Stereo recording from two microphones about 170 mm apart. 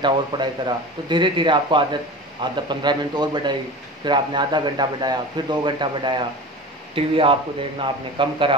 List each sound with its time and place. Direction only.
0.0 s speech: 25° right (ahead or behind)